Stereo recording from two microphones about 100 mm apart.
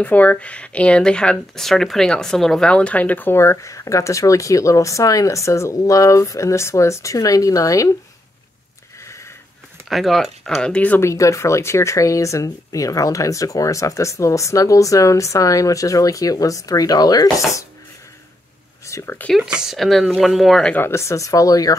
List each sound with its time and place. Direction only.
0.0 s speech: 15° left (ahead or behind); by 7.9 s 35° left (ahead or behind)
9.8 s speech: centre (ahead or behind)
11.0 s speech: 30° left (ahead or behind)
18.9 s speech: 30° left (ahead or behind)
19.3 s speech: 5° right (ahead or behind)
20.7 s speech: 25° left (ahead or behind)